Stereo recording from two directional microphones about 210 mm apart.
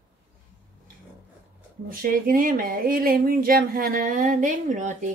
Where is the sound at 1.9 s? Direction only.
40° right (ahead or behind).